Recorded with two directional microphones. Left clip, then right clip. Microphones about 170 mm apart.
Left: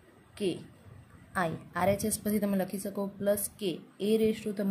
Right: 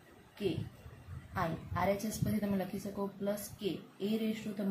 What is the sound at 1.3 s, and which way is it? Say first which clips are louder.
A woman's voice: left 5 dB; 80° left.